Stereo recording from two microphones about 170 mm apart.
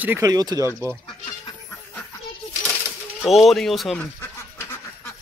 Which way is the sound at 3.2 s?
Centre (ahead or behind).